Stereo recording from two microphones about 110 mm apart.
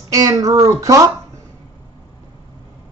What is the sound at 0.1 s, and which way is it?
Speech, 30° right (ahead or behind).